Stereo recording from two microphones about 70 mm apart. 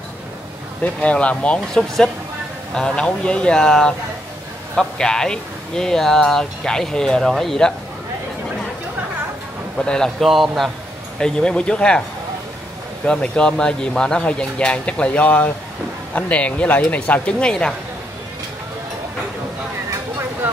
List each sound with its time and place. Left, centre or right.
1.0 s speech: centre
1.7 s speech: centre
9.8 s speech: centre
10.2 s speech: centre
11.1 s speech: centre
13.0 s speech: centre